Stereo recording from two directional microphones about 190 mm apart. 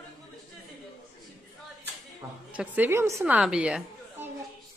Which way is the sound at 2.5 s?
5° right (ahead or behind).